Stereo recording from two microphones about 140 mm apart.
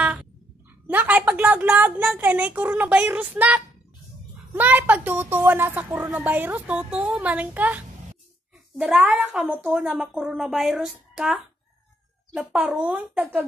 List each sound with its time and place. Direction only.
0.0 s dog: 10° right (ahead or behind)
0.8 s a woman's voice: 10° right (ahead or behind)
12.4 s speech: 5° right (ahead or behind)